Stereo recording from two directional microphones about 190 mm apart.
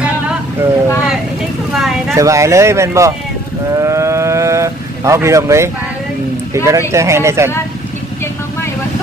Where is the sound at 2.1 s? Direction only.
15° right (ahead or behind).